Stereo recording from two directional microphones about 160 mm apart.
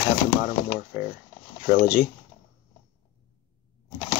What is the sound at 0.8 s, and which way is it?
Speech, 65° left (ahead or behind).